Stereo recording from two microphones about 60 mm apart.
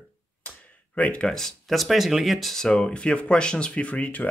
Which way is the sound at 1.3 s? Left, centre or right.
Centre.